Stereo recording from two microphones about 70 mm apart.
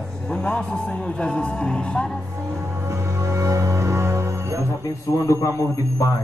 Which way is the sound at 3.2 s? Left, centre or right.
Right.